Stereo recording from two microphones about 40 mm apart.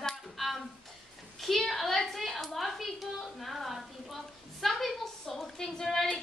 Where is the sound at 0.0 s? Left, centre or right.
Centre.